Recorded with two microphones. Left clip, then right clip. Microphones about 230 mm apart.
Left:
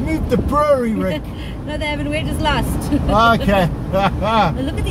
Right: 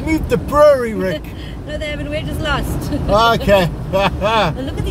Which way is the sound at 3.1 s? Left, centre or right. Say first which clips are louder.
Right 2 dB; right.